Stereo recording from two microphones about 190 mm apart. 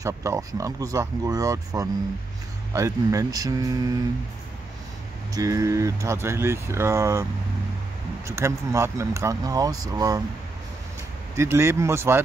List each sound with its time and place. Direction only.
0.0 s speech: 15° right (ahead or behind)
5.3 s speech: 15° right (ahead or behind)
8.3 s speech: 15° right (ahead or behind)
11.3 s speech: 15° right (ahead or behind)